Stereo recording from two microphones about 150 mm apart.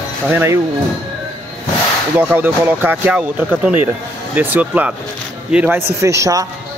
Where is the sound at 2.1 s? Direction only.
15° right (ahead or behind).